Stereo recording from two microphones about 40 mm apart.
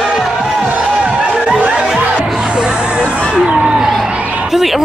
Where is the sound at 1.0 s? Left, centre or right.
Centre.